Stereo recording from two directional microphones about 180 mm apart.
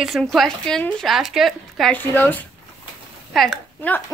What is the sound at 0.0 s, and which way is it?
Speech, centre (ahead or behind).